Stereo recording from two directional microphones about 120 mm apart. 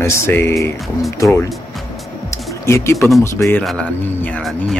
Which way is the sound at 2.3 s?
25° left (ahead or behind).